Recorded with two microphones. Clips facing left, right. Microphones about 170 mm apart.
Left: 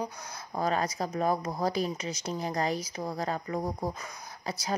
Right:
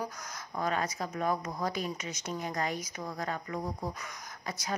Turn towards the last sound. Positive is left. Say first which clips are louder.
# left 3 dB
turn(degrees=30)  # may be behind; listen again after turning